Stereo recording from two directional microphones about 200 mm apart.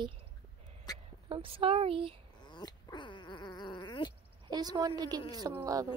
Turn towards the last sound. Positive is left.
turn(degrees=-15)  # may be behind; listen again after turning